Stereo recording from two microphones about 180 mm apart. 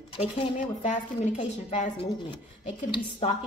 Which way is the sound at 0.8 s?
40° left (ahead or behind).